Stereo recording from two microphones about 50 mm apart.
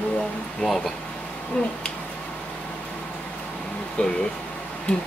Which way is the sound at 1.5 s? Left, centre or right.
Left.